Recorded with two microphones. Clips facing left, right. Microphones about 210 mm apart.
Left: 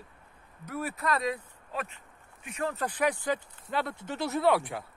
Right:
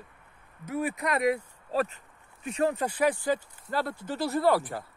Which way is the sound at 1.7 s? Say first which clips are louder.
Right 9 dB; 35° right (ahead or behind).